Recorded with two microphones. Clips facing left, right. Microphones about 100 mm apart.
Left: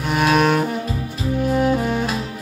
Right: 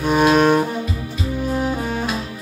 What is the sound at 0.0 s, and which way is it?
Music, 20° right (ahead or behind).